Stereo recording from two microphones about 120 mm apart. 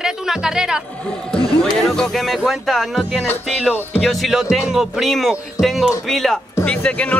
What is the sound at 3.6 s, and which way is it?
Speech, 15° left (ahead or behind).